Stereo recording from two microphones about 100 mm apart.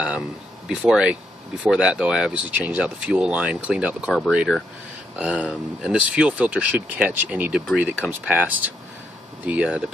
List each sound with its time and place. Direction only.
0.7 s speech: 5° right (ahead or behind)